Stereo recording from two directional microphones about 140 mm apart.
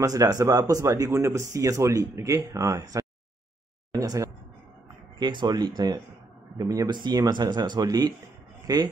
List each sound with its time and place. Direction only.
0.0 s a man's voice: 25° right (ahead or behind)